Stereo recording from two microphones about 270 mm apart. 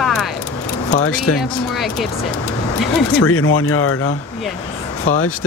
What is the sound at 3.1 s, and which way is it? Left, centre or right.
Speech, left.